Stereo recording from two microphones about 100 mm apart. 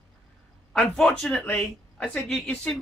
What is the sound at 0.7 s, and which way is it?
A man's voice, 5° left (ahead or behind).